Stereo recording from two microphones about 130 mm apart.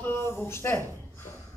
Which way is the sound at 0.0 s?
15° left (ahead or behind).